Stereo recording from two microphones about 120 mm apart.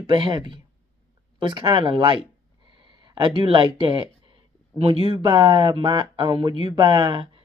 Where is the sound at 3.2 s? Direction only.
45° right (ahead or behind).